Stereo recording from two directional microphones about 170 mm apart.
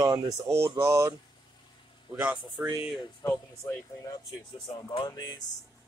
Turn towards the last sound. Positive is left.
turn(degrees=25)  # may be behind; listen again after turning